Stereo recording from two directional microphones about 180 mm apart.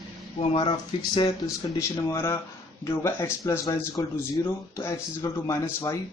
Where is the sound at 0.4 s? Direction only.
30° left (ahead or behind).